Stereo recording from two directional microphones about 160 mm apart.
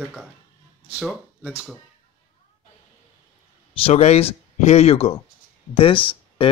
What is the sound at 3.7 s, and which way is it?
A man's voice, 40° left (ahead or behind).